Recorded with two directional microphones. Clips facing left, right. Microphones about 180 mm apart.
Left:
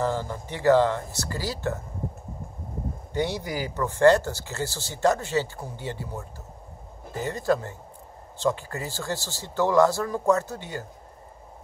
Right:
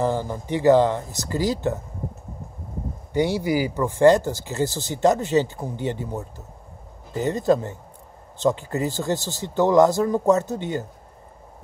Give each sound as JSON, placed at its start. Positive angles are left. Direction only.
{"t": 0.0, "sound": "speech", "side_deg": -15}
{"t": 3.1, "sound": "speech", "side_deg": -10}